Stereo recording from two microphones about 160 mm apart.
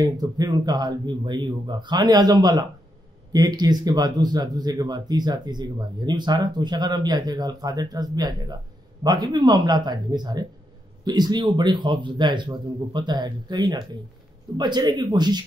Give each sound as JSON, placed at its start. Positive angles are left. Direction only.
{"t": 0.0, "sound": "speech", "side_deg": -25}